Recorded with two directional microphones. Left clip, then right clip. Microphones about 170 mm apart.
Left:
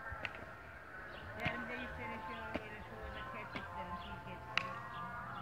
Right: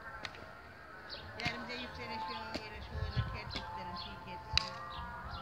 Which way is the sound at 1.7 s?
75° right (ahead or behind).